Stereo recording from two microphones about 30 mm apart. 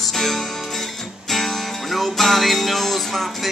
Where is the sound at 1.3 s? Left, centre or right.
Centre.